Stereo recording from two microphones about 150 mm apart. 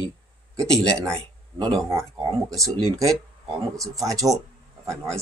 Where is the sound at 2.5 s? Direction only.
20° right (ahead or behind).